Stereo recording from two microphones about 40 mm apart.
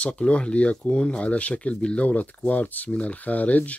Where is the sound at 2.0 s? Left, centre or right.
Left.